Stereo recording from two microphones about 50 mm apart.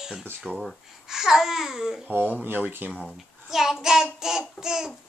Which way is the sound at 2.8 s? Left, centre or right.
Right.